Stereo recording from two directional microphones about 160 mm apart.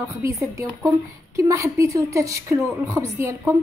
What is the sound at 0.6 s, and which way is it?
A woman's voice, 20° right (ahead or behind).